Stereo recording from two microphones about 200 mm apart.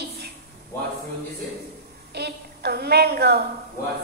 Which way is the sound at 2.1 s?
55° right (ahead or behind).